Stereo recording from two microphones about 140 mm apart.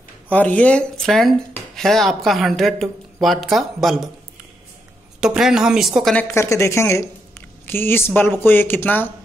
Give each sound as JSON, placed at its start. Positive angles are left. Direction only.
{"t": 0.3, "sound": "a woman's voice", "side_deg": 10}
{"t": 5.2, "sound": "a woman's voice", "side_deg": -5}
{"t": 6.1, "sound": "a woman's voice", "side_deg": 20}